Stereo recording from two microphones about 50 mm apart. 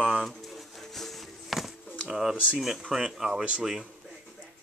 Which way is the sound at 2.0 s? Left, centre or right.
Centre.